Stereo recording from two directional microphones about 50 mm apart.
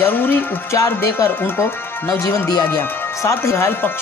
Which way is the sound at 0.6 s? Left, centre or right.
Left.